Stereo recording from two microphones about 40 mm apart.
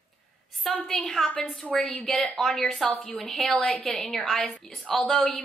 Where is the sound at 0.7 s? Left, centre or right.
Centre.